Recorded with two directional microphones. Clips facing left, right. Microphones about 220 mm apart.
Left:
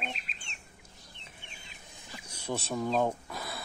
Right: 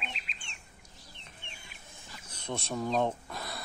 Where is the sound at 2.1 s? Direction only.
10° left (ahead or behind).